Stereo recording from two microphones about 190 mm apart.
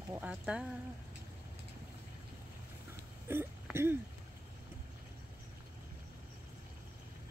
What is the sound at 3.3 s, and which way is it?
Speech, 10° right (ahead or behind).